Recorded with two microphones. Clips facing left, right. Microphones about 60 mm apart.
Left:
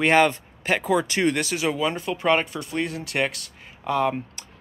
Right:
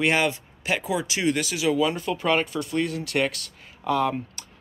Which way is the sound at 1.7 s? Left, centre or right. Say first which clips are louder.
Right 2 dB; left.